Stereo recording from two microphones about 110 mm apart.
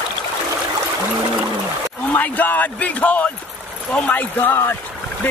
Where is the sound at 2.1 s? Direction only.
15° left (ahead or behind).